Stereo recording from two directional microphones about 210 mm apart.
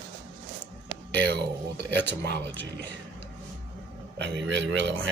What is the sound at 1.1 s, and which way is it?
Speech, 55° right (ahead or behind).